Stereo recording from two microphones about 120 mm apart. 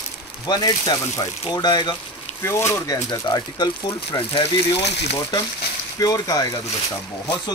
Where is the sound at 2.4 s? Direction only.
25° left (ahead or behind).